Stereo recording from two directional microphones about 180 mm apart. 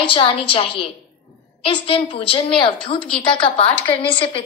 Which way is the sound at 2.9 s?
5° left (ahead or behind).